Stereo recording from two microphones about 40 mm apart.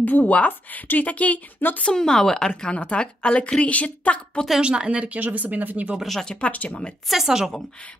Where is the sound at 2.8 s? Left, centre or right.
Left.